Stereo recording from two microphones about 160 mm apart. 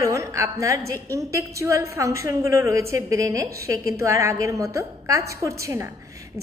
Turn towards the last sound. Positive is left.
turn(degrees=-15)  # may be behind; listen again after turning